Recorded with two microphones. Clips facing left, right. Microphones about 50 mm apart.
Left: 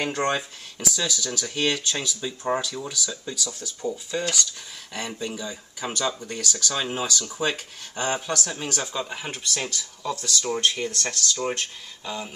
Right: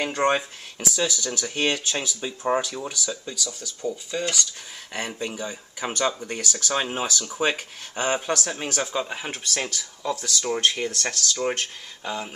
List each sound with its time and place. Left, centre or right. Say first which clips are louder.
0.0 s speech: right 3 dB; centre
3.3 s speech: even; centre
5.2 s speech: right 1 dB; right
6.9 s speech: even; centre